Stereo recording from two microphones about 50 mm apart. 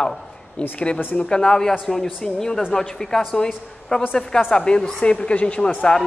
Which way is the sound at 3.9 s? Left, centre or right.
Left.